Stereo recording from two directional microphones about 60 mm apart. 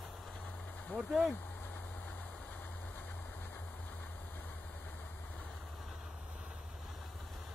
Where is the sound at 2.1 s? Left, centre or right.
Left.